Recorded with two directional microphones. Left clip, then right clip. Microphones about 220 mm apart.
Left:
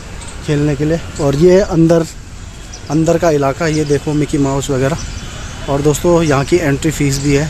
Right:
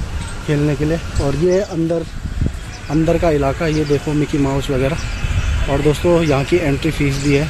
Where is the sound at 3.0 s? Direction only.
15° left (ahead or behind).